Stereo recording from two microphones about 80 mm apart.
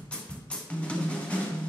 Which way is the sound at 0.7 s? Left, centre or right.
Centre.